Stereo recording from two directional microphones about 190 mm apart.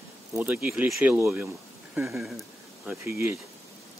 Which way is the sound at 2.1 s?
Centre (ahead or behind).